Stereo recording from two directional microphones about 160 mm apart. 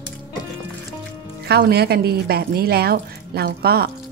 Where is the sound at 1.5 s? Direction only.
85° right.